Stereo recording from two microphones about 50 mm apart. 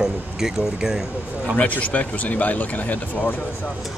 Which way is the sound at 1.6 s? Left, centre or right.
Left.